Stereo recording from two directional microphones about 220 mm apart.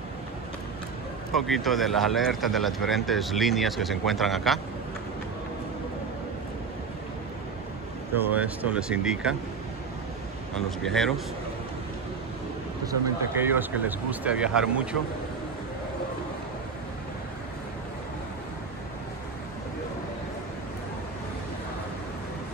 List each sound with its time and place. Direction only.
1.3 s speech: centre (ahead or behind)
8.1 s speech: 10° right (ahead or behind)
10.5 s speech: centre (ahead or behind)
13.4 s speech: 10° right (ahead or behind)